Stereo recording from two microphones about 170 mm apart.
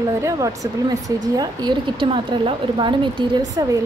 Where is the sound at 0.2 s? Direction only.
20° right (ahead or behind).